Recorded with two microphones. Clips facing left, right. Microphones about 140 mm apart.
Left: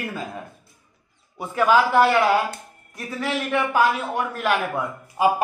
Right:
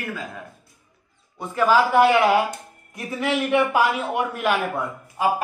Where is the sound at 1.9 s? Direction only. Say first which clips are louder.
Right 1 dB; 15° right (ahead or behind).